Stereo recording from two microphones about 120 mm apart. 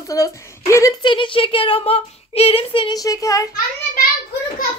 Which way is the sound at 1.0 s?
45° left (ahead or behind).